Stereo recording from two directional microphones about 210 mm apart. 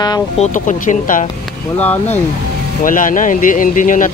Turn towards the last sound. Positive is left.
turn(degrees=40)  # may be behind; listen again after turning